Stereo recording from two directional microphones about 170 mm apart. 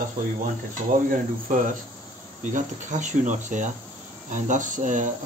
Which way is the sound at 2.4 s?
45° right (ahead or behind).